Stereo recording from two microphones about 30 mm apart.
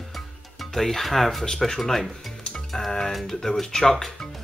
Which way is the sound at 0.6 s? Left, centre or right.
Centre.